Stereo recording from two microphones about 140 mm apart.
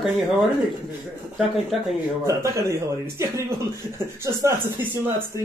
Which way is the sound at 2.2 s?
20° right (ahead or behind).